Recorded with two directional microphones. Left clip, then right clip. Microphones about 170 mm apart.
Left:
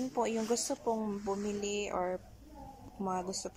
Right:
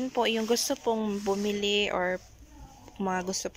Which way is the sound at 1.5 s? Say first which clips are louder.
Right 9 dB; 60° right (ahead or behind).